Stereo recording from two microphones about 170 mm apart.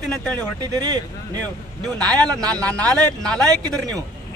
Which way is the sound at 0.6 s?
25° right (ahead or behind).